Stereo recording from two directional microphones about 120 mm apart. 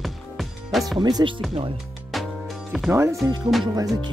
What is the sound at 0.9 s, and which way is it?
Speech, 35° right (ahead or behind).